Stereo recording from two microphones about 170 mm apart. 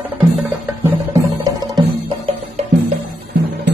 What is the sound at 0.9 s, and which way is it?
Music, 20° right (ahead or behind).